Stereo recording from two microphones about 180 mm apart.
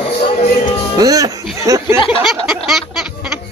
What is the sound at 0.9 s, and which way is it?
Speech, 20° right (ahead or behind).